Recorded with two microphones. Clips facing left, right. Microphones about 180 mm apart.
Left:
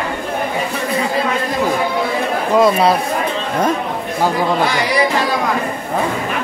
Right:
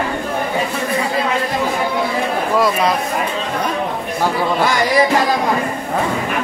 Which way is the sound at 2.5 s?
25° left (ahead or behind).